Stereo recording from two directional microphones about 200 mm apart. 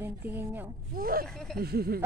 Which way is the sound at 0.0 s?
10° right (ahead or behind).